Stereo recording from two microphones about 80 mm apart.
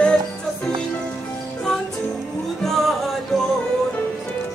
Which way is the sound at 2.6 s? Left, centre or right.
Centre.